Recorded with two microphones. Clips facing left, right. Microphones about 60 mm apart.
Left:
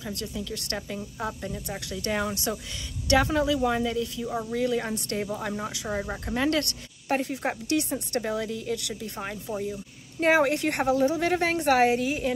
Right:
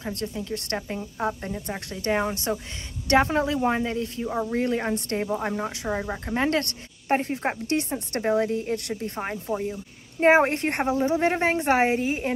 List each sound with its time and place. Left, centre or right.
0.0 s a woman's voice: right
4.3 s speech: right
4.6 s a woman's voice: right; by 6.1 s centre
6.2 s a woman's voice: right